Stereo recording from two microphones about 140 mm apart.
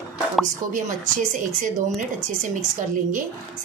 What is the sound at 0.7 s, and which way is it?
A woman's voice, 70° right (ahead or behind).